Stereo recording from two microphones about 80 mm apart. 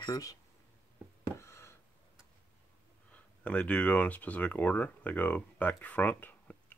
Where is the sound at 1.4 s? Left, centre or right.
Left.